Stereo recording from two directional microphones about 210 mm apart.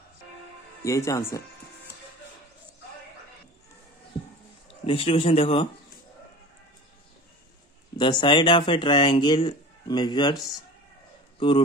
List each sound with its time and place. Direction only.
0.8 s speech: 15° left (ahead or behind)
4.6 s speech: 25° left (ahead or behind)
8.0 s speech: 20° left (ahead or behind)
11.3 s speech: 25° left (ahead or behind)